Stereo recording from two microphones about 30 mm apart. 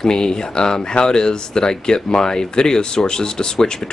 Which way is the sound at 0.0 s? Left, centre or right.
Left.